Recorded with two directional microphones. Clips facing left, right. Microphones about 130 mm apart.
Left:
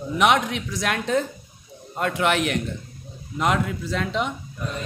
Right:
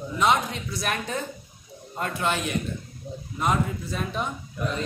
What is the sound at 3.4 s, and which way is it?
Speech, 90° left.